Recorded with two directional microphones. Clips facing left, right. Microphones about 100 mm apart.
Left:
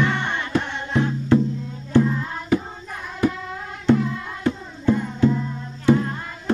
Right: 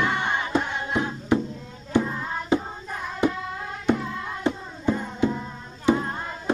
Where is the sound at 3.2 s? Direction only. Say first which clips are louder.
Left 2 dB; 20° right (ahead or behind).